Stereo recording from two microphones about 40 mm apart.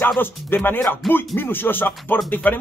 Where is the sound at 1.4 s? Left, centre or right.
Left.